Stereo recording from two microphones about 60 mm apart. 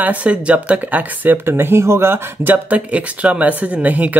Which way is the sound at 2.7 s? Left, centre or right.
Right.